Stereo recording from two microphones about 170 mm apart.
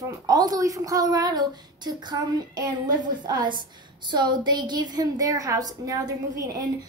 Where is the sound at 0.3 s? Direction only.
20° right (ahead or behind).